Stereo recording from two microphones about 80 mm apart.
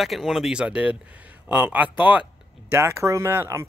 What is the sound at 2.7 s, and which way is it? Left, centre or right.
Speech, right.